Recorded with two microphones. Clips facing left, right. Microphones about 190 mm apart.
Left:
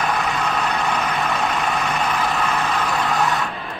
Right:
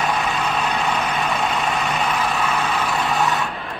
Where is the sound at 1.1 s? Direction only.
20° right (ahead or behind).